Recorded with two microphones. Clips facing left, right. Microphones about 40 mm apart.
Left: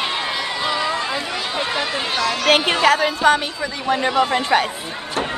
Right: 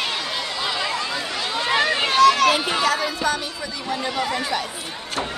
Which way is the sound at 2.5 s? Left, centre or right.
Left.